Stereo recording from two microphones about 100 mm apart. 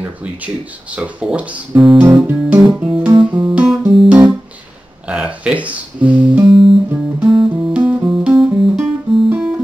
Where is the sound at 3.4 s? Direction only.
10° right (ahead or behind).